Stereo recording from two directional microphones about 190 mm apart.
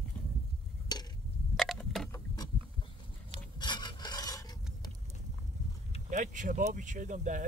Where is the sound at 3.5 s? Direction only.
25° left (ahead or behind).